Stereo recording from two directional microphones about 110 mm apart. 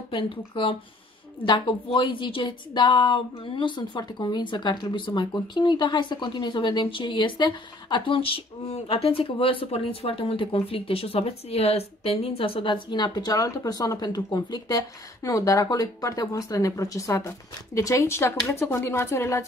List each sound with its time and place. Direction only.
0.1 s a woman's voice: 50° left (ahead or behind); by 19.4 s 25° left (ahead or behind)